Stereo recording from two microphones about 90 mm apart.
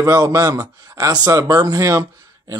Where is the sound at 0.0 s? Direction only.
40° right (ahead or behind).